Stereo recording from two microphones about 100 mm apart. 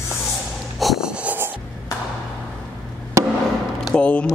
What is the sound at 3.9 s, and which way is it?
Speech, 15° left (ahead or behind).